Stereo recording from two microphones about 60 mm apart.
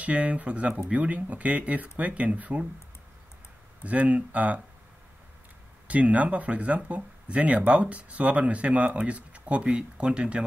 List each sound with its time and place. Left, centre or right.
0.0 s speech: right
3.8 s speech: right
5.9 s speech: right